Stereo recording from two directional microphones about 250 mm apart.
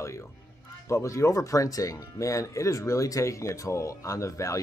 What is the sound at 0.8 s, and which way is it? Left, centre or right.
Speech, centre.